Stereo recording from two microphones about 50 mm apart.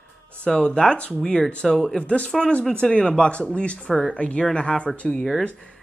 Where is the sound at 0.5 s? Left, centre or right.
Centre.